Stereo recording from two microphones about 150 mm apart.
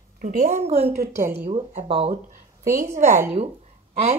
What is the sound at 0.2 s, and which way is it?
Speech, 80° right.